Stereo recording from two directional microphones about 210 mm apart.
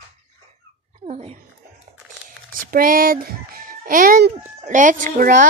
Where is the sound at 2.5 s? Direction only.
40° right (ahead or behind).